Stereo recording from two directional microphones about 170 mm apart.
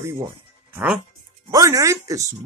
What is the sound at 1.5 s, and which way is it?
Speech, 20° right (ahead or behind).